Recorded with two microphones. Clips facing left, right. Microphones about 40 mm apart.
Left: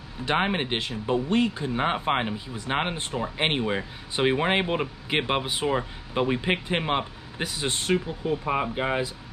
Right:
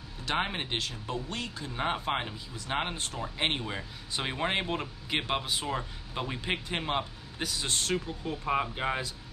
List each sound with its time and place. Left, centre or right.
0.2 s speech: left